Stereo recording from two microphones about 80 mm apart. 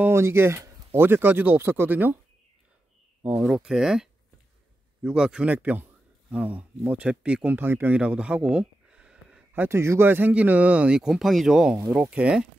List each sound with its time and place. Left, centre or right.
0.1 s speech: right
3.3 s speech: centre
8.0 s a sound: centre
9.5 s speech: right
11.0 s speech: centre